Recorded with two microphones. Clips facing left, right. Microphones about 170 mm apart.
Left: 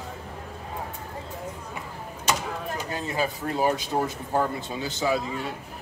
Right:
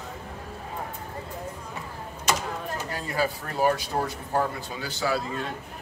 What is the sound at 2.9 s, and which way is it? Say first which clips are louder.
Speech: even; 20° left (ahead or behind).